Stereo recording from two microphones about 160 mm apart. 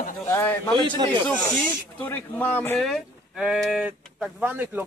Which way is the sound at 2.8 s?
Centre (ahead or behind).